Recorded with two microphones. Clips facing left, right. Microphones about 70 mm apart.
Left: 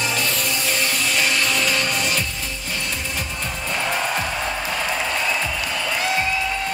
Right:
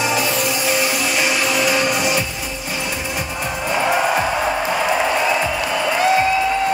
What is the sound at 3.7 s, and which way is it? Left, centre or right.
Music, centre.